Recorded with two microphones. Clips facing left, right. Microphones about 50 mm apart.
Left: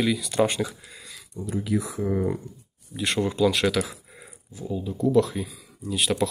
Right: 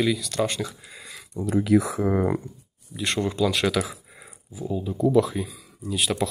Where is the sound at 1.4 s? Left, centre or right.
Right.